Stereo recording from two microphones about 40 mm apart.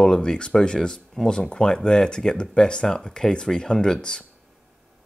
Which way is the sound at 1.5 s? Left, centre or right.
Left.